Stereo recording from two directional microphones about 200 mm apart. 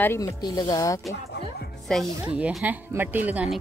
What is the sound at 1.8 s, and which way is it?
Speech, centre (ahead or behind).